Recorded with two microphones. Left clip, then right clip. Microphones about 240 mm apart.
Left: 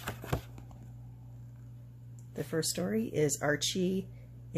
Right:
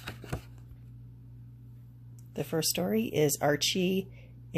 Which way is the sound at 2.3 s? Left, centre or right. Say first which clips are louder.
Right 3 dB; centre.